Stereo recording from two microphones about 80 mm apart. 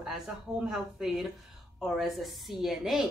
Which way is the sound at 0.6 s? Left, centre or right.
Centre.